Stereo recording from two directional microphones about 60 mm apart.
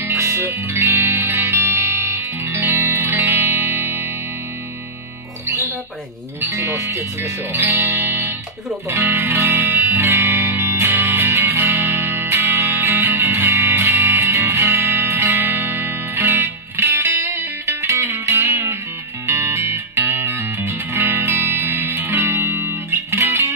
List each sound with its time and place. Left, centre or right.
0.1 s music: right
0.8 s music: right
6.5 s speech: right
7.7 s music: right
14.3 s music: right
15.1 s music: right
17.8 s music: right
18.3 s music: right
21.0 s music: right